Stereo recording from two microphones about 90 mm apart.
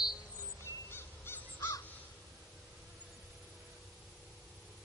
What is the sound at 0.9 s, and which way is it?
Crow, 25° left (ahead or behind).